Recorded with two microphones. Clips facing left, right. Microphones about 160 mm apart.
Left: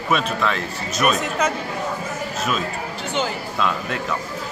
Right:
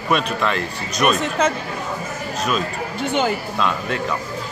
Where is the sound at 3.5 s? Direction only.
Centre (ahead or behind).